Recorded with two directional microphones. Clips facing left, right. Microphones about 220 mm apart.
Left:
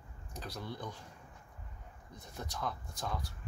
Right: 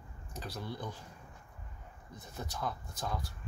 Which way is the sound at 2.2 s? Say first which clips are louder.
Right 1 dB; 5° right (ahead or behind).